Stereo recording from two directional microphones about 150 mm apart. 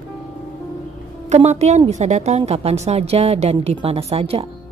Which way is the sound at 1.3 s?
50° right (ahead or behind).